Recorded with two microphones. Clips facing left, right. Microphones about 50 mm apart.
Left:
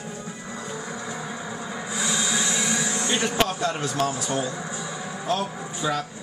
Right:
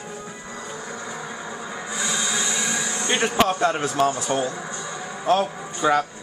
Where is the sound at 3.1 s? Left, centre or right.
Centre.